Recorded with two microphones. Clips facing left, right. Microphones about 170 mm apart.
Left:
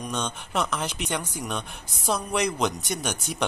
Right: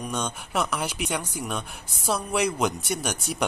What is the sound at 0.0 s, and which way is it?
Speech, 10° right (ahead or behind).